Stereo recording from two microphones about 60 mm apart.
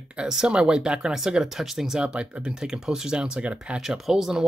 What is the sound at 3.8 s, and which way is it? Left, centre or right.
Speech, centre.